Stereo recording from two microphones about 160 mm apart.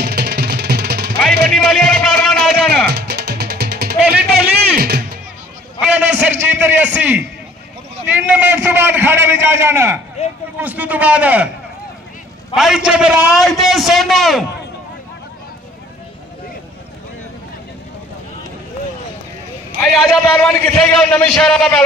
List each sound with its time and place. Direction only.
0.0 s music: 90° right
1.5 s music: centre (ahead or behind)
2.9 s music: 90° right
5.8 s a sound: 5° right (ahead or behind)
6.4 s a man's voice: 10° right (ahead or behind)
10.2 s speech: 40° left (ahead or behind)
10.6 s a man's voice: 10° right (ahead or behind)
12.5 s a man's voice: 5° right (ahead or behind)
19.9 s a man's voice: centre (ahead or behind)